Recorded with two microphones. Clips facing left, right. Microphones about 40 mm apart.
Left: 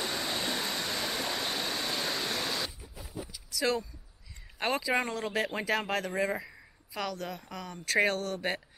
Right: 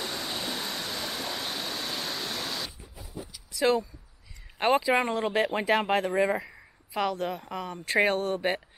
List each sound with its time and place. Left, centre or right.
0.0 s vehicle: centre
3.5 s speech: right